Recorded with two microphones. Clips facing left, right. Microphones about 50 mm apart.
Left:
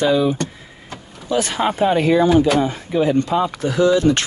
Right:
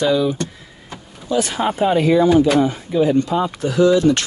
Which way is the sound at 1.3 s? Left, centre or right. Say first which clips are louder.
Even; left.